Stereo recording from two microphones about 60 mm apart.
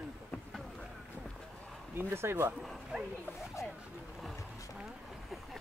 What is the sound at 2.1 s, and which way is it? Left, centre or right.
Speech, right.